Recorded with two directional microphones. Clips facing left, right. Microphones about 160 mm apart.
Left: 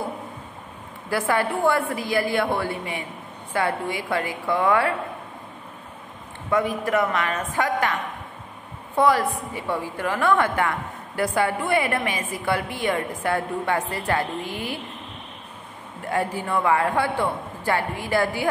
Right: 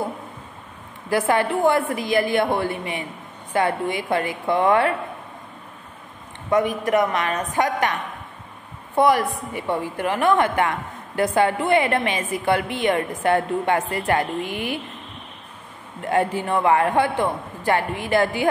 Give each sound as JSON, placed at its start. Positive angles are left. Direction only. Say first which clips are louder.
{"t": 1.1, "sound": "a woman's voice", "louder": "right 3 dB", "side_deg": -20}
{"t": 6.5, "sound": "a woman's voice", "louder": "right 3 dB", "side_deg": -20}
{"t": 8.9, "sound": "a woman's voice", "louder": "right 2 dB", "side_deg": -15}
{"t": 16.0, "sound": "a woman's voice", "louder": "right 4 dB", "side_deg": -20}